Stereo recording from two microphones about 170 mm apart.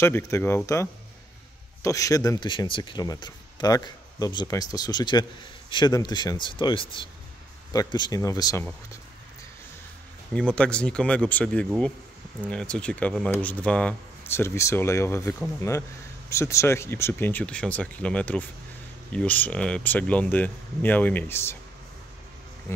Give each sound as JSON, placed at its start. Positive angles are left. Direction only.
{"t": 0.0, "sound": "speech", "side_deg": 15}
{"t": 10.3, "sound": "speech", "side_deg": 5}